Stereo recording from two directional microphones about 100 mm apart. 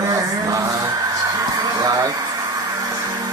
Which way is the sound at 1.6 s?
40° right (ahead or behind).